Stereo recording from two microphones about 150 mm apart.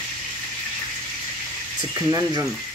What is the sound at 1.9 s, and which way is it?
Speech, 25° right (ahead or behind).